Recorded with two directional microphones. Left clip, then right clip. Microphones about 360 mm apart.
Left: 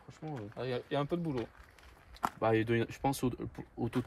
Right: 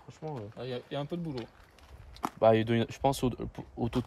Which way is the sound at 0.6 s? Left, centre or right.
Centre.